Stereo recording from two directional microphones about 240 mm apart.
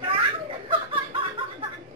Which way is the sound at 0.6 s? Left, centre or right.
Right.